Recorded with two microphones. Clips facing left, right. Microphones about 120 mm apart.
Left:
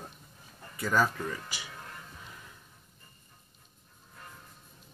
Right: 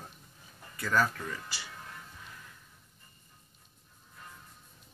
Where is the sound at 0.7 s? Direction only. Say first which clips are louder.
Left 1 dB; 20° left (ahead or behind).